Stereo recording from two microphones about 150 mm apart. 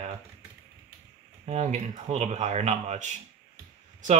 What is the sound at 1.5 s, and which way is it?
Speech, 50° right (ahead or behind).